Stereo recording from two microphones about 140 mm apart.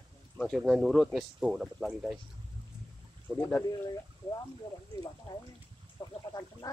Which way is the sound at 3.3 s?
5° right (ahead or behind).